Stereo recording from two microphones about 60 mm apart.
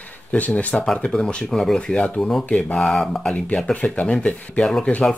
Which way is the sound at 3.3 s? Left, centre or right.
Left.